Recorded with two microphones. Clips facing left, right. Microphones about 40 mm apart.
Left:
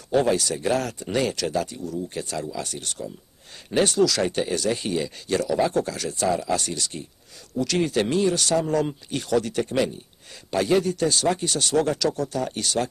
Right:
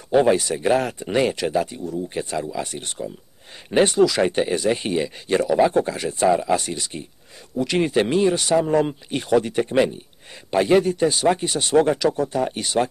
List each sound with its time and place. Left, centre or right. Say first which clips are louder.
0.1 s speech: right 4 dB; right